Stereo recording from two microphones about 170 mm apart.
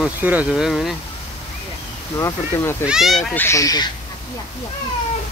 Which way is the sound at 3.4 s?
20° left (ahead or behind).